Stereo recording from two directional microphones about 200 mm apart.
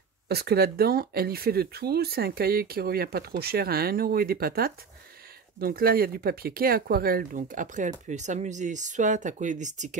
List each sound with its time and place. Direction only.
0.3 s speech: 50° right (ahead or behind)